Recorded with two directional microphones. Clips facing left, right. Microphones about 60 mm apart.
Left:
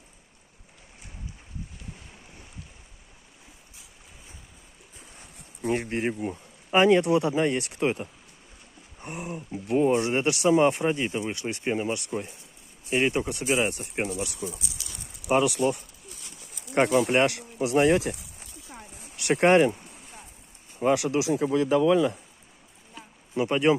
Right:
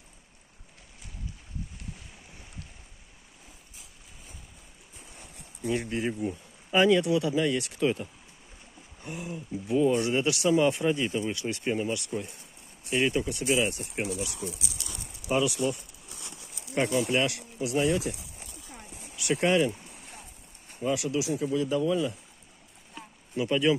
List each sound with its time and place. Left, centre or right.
5.6 s speech: left
6.7 s speech: left
9.7 s speech: left
13.7 s speech: left
15.3 s speech: left
19.1 s speech: left
21.0 s speech: left
23.3 s speech: left